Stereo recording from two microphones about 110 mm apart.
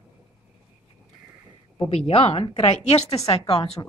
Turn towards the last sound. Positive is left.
turn(degrees=60)  # may be behind; listen again after turning